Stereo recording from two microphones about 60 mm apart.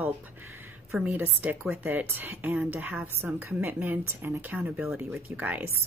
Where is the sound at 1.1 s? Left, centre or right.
Right.